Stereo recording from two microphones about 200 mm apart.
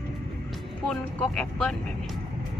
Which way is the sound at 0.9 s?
5° left (ahead or behind).